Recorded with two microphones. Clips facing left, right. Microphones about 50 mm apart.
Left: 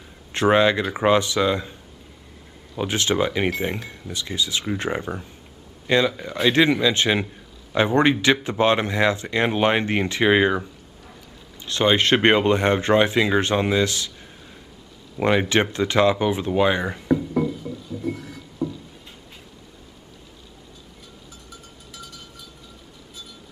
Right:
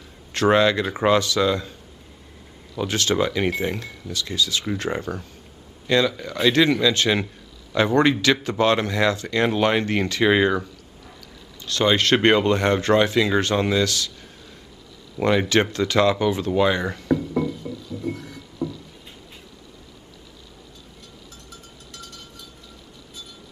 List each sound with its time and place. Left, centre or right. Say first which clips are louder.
0.3 s a man's voice: even; left
15.2 s speech: even; left
17.4 s music: left 1 dB; centre
18.0 s music: left 1 dB; centre
18.6 s a sound: left 1 dB; right
21.5 s a sound: even; centre